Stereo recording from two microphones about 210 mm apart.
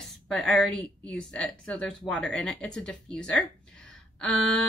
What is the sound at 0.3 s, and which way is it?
A woman's voice, 5° left (ahead or behind).